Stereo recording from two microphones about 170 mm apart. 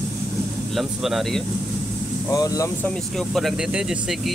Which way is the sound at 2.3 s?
20° left (ahead or behind).